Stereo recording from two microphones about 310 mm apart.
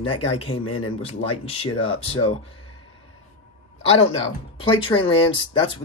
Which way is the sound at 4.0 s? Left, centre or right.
Centre.